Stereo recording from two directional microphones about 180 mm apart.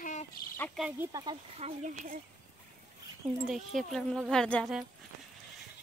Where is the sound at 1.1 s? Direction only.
25° right (ahead or behind).